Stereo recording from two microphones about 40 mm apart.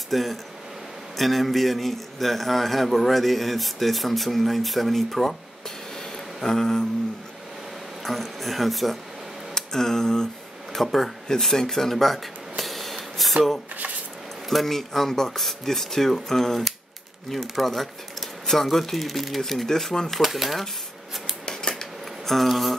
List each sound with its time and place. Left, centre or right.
0.1 s a man's voice: centre
6.4 s a sound: centre
8.0 s speech: centre
9.5 s tick: centre
10.7 s speech: centre
11.2 s a sound: centre
14.5 s a man's voice: centre
20.2 s a man's voice: centre
21.5 s a sound: centre
22.3 s a man's voice: centre